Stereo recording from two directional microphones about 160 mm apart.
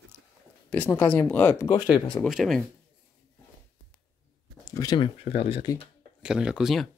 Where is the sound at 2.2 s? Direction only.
Centre (ahead or behind).